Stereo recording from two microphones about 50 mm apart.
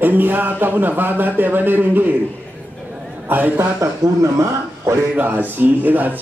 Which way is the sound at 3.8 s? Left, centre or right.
Right.